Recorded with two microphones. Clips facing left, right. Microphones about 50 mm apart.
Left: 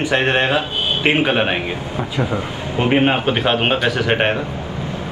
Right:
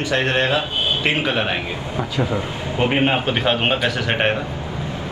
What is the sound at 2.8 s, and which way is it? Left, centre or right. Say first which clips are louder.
A man's voice: left 3 dB; centre.